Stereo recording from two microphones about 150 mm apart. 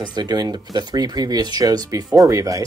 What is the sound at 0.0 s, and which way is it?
Speech, 30° right (ahead or behind).